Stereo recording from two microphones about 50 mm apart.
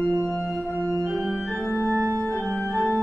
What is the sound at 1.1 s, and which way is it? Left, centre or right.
Organ, centre.